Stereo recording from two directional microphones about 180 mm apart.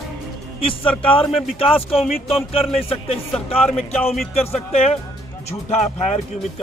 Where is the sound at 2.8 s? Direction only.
35° left (ahead or behind).